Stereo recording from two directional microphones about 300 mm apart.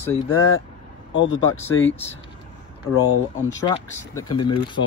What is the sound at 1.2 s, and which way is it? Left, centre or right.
Speech, left.